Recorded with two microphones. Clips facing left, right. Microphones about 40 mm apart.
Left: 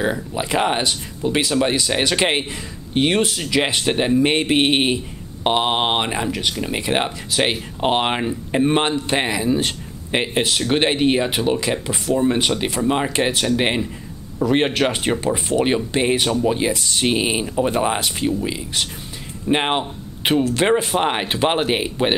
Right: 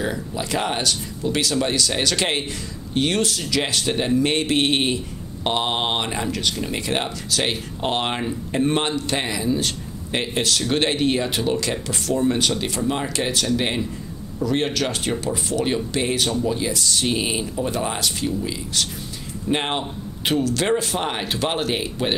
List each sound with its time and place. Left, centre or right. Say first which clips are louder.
0.0 s speech: left 4 dB; left